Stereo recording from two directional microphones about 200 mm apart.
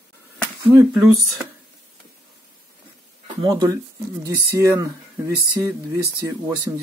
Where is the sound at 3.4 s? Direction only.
20° right (ahead or behind).